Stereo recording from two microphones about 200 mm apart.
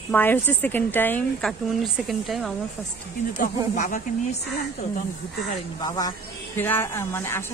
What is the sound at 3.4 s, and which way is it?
Speech, 40° left (ahead or behind).